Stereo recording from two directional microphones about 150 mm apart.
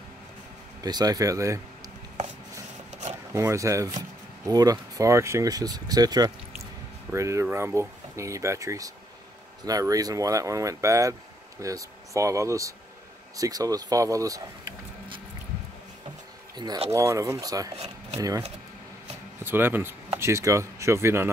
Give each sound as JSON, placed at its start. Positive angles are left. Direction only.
{"t": 0.8, "sound": "speech", "side_deg": -25}
{"t": 3.3, "sound": "speech", "side_deg": -20}
{"t": 16.5, "sound": "speech", "side_deg": -25}
{"t": 19.4, "sound": "speech", "side_deg": -15}